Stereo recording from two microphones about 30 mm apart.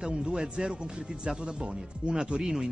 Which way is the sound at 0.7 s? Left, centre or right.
Right.